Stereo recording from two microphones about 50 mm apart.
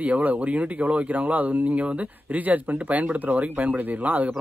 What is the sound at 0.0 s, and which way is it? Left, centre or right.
Speech, right.